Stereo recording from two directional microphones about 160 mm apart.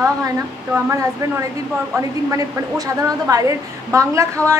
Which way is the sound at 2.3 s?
20° right (ahead or behind).